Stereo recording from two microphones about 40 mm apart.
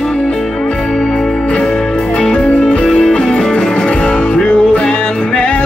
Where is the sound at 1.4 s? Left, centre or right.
Left.